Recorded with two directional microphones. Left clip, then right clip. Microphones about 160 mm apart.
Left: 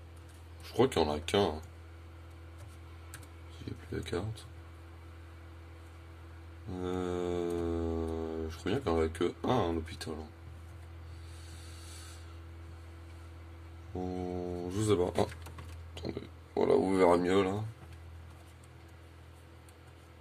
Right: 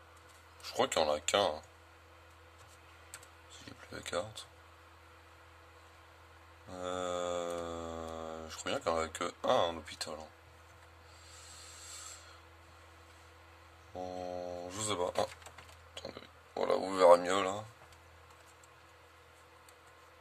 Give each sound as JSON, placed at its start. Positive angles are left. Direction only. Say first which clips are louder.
{"t": 0.7, "sound": "speech", "louder": "left 2 dB", "side_deg": -20}
{"t": 6.7, "sound": "mantra", "louder": "left 1 dB", "side_deg": -20}
{"t": 13.9, "sound": "speech", "louder": "left 2 dB", "side_deg": -10}